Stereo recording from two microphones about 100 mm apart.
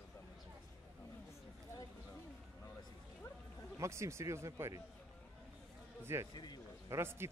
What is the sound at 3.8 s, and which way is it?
Speech, 30° right (ahead or behind).